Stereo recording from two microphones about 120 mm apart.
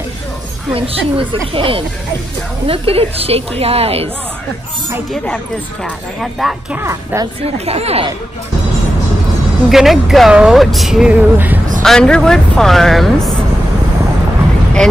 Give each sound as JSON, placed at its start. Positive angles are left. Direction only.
{"t": 0.7, "sound": "a woman's voice", "side_deg": -50}
{"t": 5.1, "sound": "speech", "side_deg": 5}
{"t": 6.8, "sound": "a woman's voice", "side_deg": -20}
{"t": 7.4, "sound": "a woman's voice", "side_deg": -55}
{"t": 9.7, "sound": "speech", "side_deg": -5}
{"t": 11.8, "sound": "speech", "side_deg": 5}